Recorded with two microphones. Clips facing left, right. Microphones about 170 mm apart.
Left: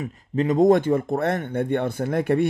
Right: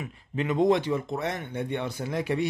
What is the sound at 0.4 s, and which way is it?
Speech, 40° left (ahead or behind).